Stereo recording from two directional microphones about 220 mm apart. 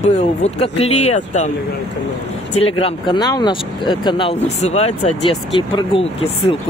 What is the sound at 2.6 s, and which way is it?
Speech, 25° left (ahead or behind).